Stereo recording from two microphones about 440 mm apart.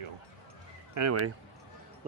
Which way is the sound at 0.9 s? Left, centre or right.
Right.